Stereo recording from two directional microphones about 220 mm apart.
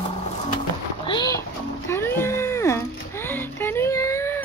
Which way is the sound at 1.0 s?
20° left (ahead or behind).